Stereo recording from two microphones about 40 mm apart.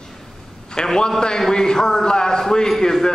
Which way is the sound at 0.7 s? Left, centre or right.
Centre.